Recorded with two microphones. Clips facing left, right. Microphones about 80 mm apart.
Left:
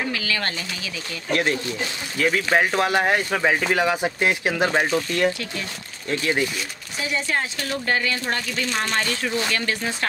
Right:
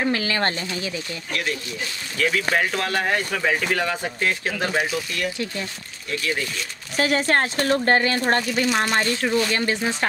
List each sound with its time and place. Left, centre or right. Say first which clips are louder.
0.1 s speech: right 4 dB; right
1.3 s speech: left 6 dB; left
2.1 s speech: left 2 dB; centre
4.7 s speech: left 3 dB; left
7.0 s speech: right 5 dB; right
8.5 s speech: right 4 dB; centre